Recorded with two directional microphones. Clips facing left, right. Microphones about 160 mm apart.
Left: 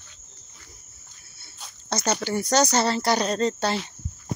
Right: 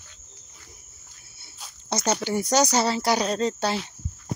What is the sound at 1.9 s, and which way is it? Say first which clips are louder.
Speech: right 1 dB; 15° right (ahead or behind).